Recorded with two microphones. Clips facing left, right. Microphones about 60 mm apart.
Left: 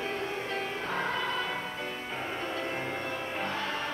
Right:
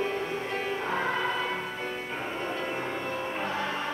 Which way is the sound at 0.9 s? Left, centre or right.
Centre.